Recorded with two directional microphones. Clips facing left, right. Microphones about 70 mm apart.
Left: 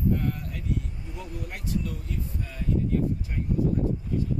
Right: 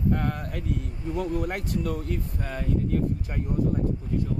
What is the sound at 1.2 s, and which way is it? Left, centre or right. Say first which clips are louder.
Speech: right 11 dB; right.